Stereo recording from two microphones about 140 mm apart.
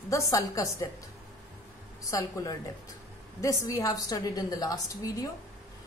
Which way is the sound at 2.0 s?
25° left (ahead or behind).